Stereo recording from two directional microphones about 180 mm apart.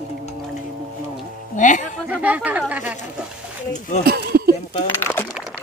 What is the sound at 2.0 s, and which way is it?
Speech, 10° right (ahead or behind).